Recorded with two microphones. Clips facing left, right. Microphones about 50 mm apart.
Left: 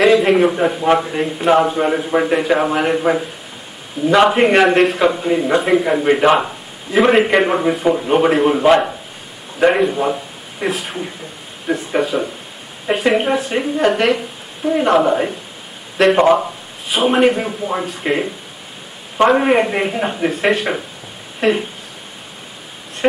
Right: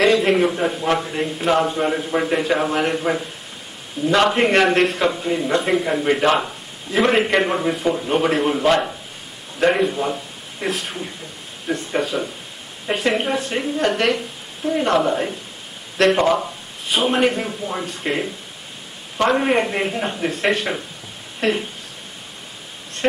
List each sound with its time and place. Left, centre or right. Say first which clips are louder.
0.0 s a man's voice: left 4 dB; centre
16.9 s a man's voice: left 4 dB; centre